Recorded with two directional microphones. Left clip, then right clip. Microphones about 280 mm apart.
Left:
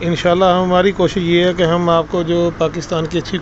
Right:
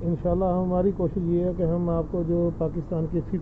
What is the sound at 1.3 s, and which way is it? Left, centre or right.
Speech, centre.